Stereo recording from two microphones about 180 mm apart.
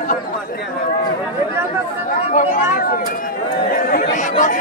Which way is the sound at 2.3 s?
45° left (ahead or behind).